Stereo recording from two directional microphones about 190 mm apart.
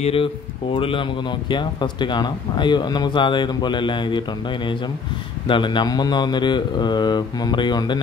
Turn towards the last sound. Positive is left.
turn(degrees=25)  # may be behind; listen again after turning